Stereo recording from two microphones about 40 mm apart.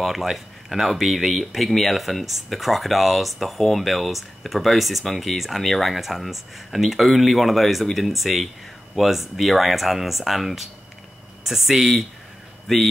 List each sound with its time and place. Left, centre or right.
0.0 s speech: centre